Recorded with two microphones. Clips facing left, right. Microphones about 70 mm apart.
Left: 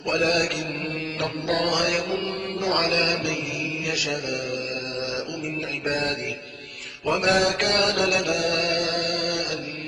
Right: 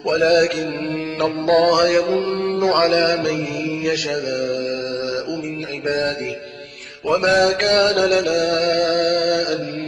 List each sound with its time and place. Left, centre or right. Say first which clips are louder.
0.0 s mantra: right 8 dB; right
7.1 s mantra: right 6 dB; right